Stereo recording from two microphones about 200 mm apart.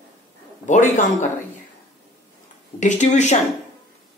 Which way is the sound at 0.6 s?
40° left (ahead or behind).